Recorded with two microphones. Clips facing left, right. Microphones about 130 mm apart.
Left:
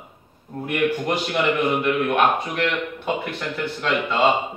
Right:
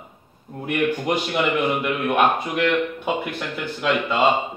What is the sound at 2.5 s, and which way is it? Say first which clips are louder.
Speech: right 3 dB; 5° right (ahead or behind).